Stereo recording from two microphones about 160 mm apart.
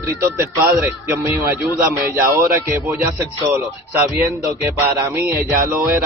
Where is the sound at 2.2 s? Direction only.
70° right (ahead or behind).